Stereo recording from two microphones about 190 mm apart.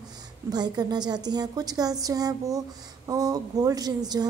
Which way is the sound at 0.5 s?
20° right (ahead or behind).